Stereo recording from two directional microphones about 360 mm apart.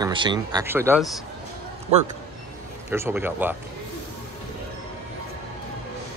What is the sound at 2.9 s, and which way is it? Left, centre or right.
Speech, centre.